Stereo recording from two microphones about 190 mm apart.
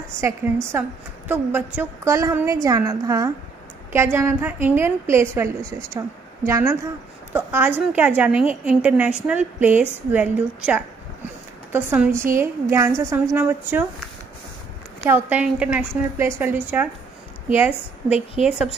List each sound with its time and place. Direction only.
0.2 s a woman's voice: 15° right (ahead or behind)
15.0 s a woman's voice: 10° right (ahead or behind)